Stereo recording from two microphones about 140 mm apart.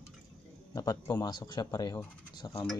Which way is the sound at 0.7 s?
25° left (ahead or behind).